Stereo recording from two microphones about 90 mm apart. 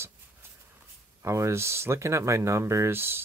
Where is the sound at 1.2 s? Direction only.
30° right (ahead or behind).